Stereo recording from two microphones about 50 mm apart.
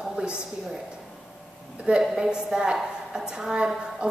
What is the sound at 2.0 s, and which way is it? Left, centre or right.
A woman's voice, centre.